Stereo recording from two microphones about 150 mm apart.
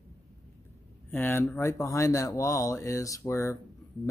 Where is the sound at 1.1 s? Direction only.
15° left (ahead or behind).